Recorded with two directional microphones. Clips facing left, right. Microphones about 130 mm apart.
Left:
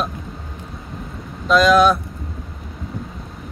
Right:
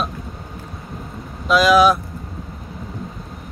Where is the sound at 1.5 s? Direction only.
5° right (ahead or behind).